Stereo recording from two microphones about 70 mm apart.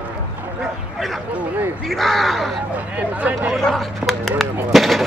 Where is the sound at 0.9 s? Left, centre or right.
Centre.